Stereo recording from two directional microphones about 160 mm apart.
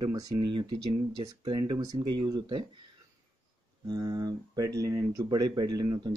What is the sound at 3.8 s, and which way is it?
Speech, 25° right (ahead or behind).